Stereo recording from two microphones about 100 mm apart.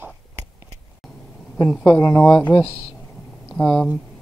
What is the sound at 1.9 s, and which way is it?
Speech, 30° left (ahead or behind).